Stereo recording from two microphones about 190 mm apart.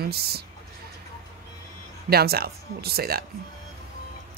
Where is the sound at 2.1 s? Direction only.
55° right (ahead or behind).